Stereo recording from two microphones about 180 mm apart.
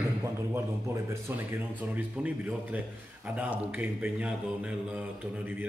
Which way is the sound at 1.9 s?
10° right (ahead or behind).